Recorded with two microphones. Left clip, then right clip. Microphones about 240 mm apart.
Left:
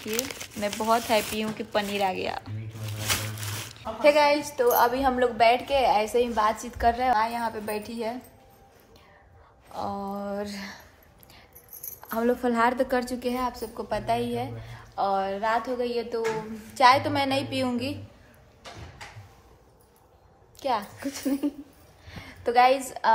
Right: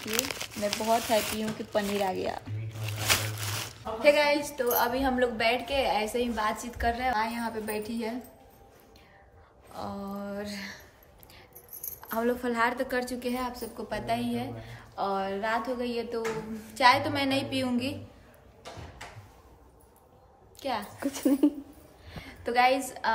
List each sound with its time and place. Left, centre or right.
0.0 s a woman's voice: centre
2.0 s speech: centre
2.8 s speech: centre
9.7 s a woman's voice: centre
12.0 s a woman's voice: centre
20.5 s a woman's voice: centre
21.0 s speech: centre
22.1 s a woman's voice: centre